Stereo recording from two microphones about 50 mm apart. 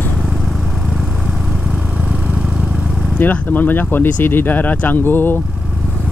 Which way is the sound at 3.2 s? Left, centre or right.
Left.